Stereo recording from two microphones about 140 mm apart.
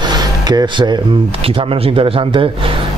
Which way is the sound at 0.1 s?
30° right (ahead or behind).